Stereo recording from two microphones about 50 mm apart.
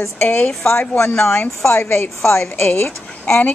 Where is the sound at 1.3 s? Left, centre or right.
Left.